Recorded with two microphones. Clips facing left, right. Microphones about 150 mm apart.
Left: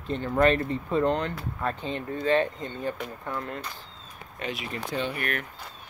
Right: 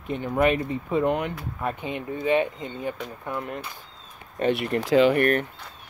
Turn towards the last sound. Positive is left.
turn(degrees=-45)  # may be behind; listen again after turning